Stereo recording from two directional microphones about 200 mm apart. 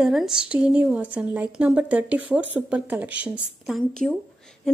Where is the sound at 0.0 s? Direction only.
Centre (ahead or behind).